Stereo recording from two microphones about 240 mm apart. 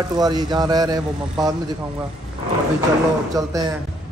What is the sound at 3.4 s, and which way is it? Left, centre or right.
Speech, centre.